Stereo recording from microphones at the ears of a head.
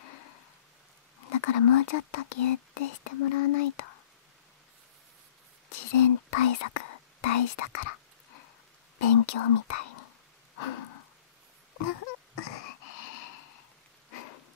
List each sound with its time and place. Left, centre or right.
0.0 s rain: left
1.2 s speech: left
5.7 s speech: left
8.9 s whispering: left
11.7 s a sound: left